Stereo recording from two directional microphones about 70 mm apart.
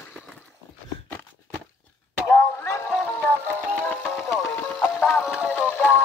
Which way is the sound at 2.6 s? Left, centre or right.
Left.